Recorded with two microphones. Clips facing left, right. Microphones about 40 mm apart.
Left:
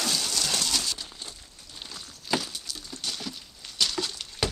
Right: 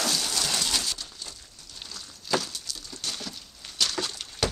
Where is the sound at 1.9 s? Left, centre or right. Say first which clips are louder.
Right 1 dB; centre.